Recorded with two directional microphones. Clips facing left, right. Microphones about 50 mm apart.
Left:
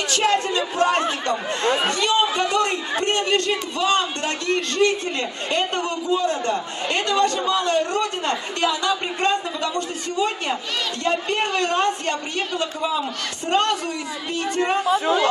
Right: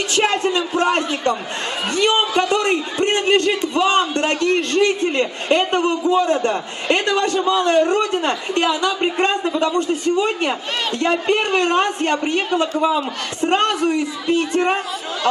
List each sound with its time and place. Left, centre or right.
0.1 s speech: right
2.0 s a man's voice: right
14.9 s speech: left